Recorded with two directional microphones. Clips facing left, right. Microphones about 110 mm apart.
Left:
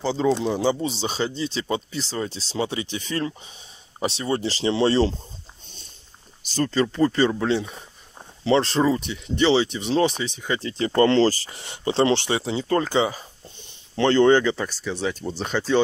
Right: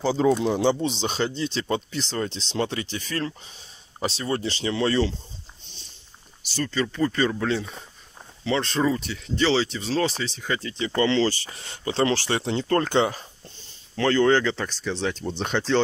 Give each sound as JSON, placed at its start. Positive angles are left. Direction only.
{"t": 0.0, "sound": "speech", "side_deg": -5}
{"t": 6.5, "sound": "speech", "side_deg": 35}
{"t": 8.5, "sound": "speech", "side_deg": 30}
{"t": 11.0, "sound": "speech", "side_deg": 40}
{"t": 11.5, "sound": "speech", "side_deg": 25}
{"t": 12.3, "sound": "speech", "side_deg": 5}
{"t": 13.9, "sound": "speech", "side_deg": 25}